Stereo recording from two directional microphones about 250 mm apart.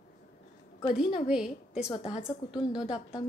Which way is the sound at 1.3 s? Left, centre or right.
Centre.